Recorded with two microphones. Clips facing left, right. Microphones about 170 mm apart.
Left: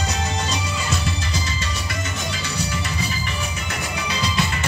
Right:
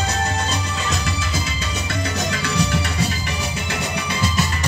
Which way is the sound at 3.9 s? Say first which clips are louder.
Even; 50° right (ahead or behind).